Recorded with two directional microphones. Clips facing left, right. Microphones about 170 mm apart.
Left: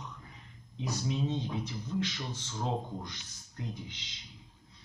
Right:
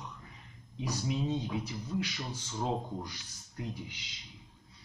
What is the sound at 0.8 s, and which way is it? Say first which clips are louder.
Speech: even; 10° right (ahead or behind).